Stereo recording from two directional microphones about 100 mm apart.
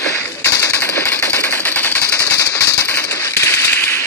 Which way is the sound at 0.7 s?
15° left (ahead or behind).